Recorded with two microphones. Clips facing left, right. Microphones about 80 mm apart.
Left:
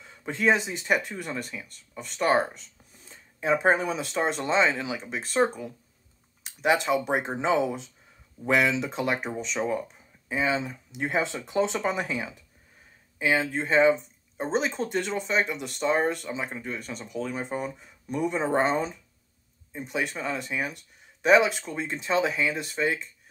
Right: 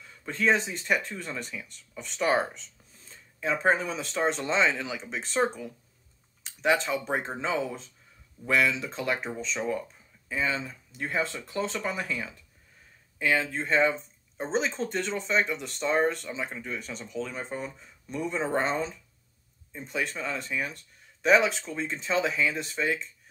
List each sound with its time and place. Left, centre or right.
0.0 s speech: left; by 2.7 s centre
3.1 s a sound: centre
3.6 s speech: centre